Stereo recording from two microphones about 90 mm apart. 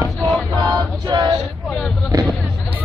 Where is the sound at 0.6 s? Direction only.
55° right (ahead or behind).